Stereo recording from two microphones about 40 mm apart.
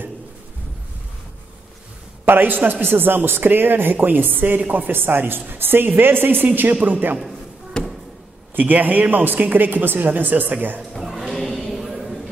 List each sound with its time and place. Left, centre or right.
2.2 s a man's voice: right
6.7 s speech: right
8.5 s speech: right
11.0 s music: centre
11.3 s a sound: centre